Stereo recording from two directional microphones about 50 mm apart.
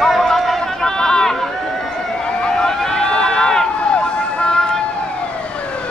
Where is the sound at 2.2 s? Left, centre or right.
Centre.